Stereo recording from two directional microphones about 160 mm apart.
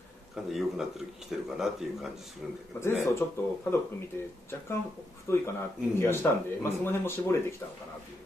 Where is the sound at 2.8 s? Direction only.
15° left (ahead or behind).